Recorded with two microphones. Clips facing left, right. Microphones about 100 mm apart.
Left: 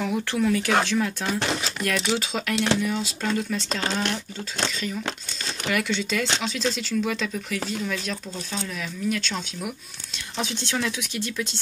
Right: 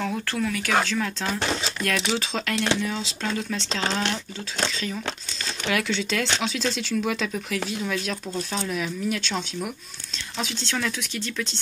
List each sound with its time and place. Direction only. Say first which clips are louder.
0.0 s speech: left 3 dB; 15° left (ahead or behind); by 9.7 s centre (ahead or behind)
10.4 s speech: left 1 dB; 15° left (ahead or behind)